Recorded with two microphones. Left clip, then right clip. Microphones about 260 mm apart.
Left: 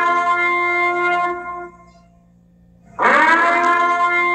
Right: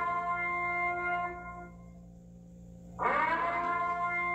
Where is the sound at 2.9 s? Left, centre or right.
Left.